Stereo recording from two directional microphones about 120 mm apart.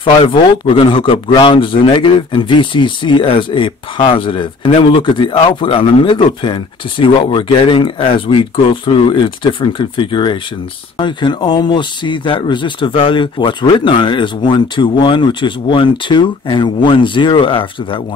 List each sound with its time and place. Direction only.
0.0 s speech: 45° left (ahead or behind)